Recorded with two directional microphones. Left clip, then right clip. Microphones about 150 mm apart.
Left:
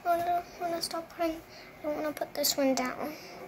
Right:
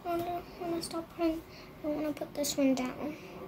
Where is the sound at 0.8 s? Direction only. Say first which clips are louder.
Left 1 dB; 15° right (ahead or behind).